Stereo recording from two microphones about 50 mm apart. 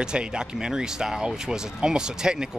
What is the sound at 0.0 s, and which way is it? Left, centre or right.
Speech, centre.